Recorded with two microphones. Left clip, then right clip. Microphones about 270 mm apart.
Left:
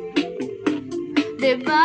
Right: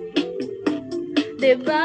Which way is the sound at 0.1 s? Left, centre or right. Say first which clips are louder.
Even; centre.